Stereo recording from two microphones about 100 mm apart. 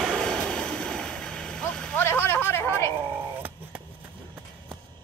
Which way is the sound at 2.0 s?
25° left (ahead or behind).